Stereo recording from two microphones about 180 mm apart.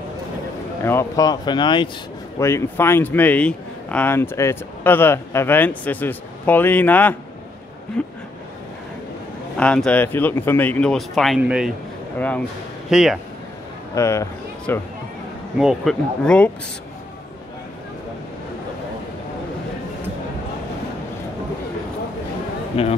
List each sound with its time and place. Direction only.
0.8 s speech: 15° left (ahead or behind)
2.3 s speech: 15° left (ahead or behind)
9.6 s speech: 5° left (ahead or behind)
12.2 s speech: 10° left (ahead or behind)
12.9 s speech: 5° right (ahead or behind)
13.9 s speech: 15° left (ahead or behind)
15.5 s speech: centre (ahead or behind)
22.8 s speech: 30° left (ahead or behind)